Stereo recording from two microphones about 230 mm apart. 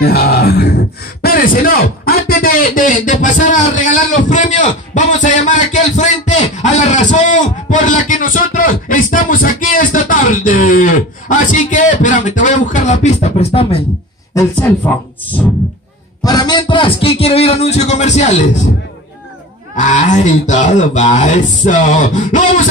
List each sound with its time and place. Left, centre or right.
0.0 s music: left
1.2 s speech: left
14.3 s speech: centre
16.3 s a man's voice: centre
19.8 s speech: left